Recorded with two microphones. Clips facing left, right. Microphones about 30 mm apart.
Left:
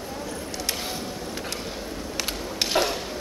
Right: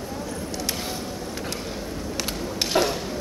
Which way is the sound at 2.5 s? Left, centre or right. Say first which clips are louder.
Right 1 dB; left.